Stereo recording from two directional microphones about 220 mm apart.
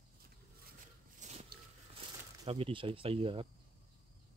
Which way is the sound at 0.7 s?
35° right (ahead or behind).